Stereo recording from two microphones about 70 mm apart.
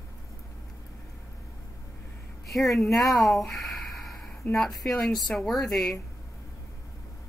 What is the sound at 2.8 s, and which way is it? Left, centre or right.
Speech, left.